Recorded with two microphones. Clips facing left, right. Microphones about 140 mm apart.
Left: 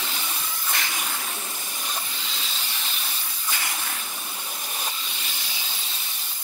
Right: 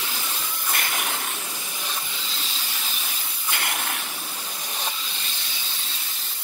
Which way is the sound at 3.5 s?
65° right (ahead or behind).